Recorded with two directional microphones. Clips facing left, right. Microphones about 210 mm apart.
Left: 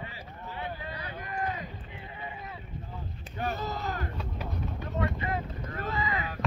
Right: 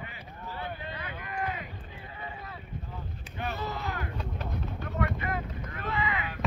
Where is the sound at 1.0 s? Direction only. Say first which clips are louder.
Left 1 dB; 40° left (ahead or behind).